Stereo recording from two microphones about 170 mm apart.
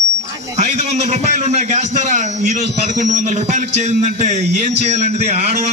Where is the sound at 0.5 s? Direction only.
45° right (ahead or behind).